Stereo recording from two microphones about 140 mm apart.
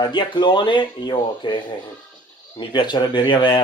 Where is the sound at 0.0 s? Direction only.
35° left (ahead or behind).